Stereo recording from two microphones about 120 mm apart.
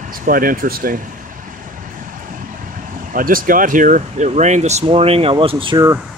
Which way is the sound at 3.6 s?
90° right.